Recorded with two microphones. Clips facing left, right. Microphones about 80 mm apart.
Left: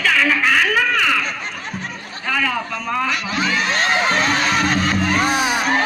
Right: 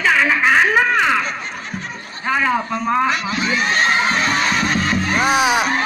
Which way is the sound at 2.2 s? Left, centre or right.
Right.